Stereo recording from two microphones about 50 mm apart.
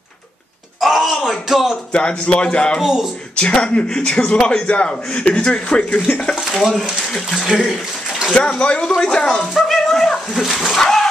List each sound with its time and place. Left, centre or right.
0.7 s wail: centre
1.5 s speech: centre
1.9 s speech: centre
2.8 s speech: centre
3.3 s speech: centre
6.7 s speech: centre
7.3 s speech: centre
8.4 s speech: left
9.5 s a sound: centre
10.4 s speech: centre
10.7 s speech: centre